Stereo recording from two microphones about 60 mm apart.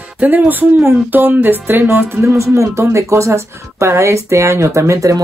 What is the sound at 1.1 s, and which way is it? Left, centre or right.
Speech, right.